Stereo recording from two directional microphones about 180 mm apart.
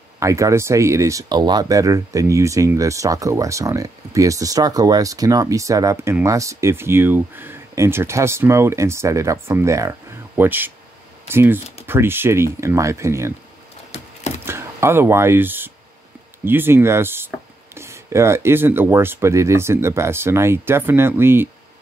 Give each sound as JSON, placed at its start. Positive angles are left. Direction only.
{"t": 0.2, "sound": "speech", "side_deg": -15}
{"t": 14.4, "sound": "a sound", "side_deg": -15}
{"t": 16.4, "sound": "speech", "side_deg": -10}